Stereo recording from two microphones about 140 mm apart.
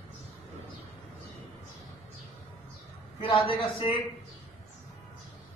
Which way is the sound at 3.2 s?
40° left (ahead or behind).